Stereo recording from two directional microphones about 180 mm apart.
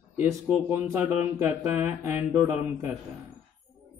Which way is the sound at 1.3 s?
15° right (ahead or behind).